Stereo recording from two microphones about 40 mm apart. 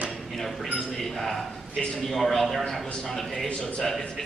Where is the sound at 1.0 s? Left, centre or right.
Centre.